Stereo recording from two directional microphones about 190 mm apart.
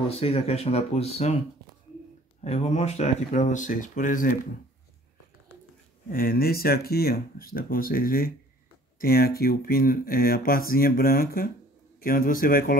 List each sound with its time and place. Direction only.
0.1 s speech: 30° left (ahead or behind)
2.4 s speech: 35° left (ahead or behind)
6.1 s speech: 50° left (ahead or behind)